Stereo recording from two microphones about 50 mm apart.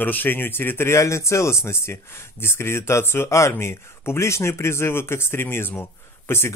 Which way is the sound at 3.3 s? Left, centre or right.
Left.